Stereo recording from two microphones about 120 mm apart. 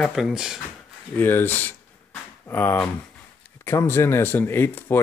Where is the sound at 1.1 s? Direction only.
15° left (ahead or behind).